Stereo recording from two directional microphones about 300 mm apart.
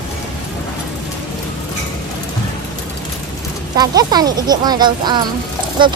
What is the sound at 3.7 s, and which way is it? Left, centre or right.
Speech, centre.